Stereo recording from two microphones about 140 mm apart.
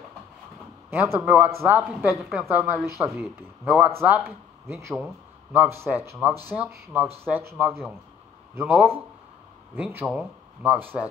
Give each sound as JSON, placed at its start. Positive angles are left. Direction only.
{"t": 0.8, "sound": "speech", "side_deg": -20}